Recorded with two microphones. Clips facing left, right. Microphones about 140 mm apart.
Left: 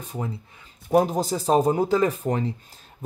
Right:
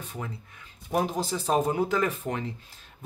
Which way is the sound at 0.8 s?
40° left (ahead or behind).